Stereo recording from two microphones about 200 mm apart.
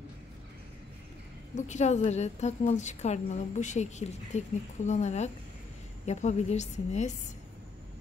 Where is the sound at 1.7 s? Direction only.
35° left (ahead or behind).